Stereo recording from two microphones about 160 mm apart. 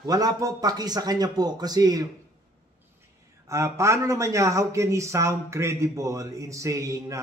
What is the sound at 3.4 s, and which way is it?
A man's voice, 15° right (ahead or behind).